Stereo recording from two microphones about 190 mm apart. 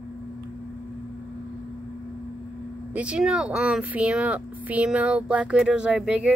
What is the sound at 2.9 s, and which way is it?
Speech, 5° right (ahead or behind).